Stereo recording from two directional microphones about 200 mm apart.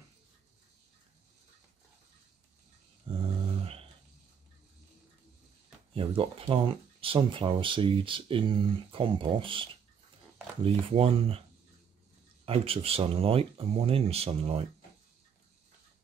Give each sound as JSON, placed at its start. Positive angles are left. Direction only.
{"t": 3.1, "sound": "a sound", "side_deg": -25}
{"t": 5.9, "sound": "speech", "side_deg": -25}
{"t": 12.4, "sound": "speech", "side_deg": -30}